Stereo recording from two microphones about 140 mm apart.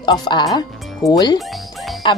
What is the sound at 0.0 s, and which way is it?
Speech, 30° left (ahead or behind).